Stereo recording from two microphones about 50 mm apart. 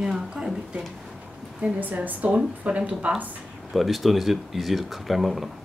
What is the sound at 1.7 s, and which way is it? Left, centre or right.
A woman's voice, right.